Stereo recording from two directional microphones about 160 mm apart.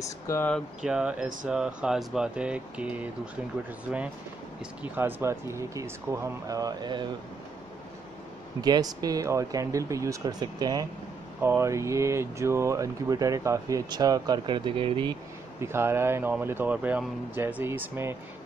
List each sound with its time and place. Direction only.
0.0 s speech: 20° left (ahead or behind)
0.8 s speech: 5° right (ahead or behind)
4.9 s speech: 15° right (ahead or behind)
8.5 s speech: 25° right (ahead or behind)
15.6 s speech: 15° right (ahead or behind)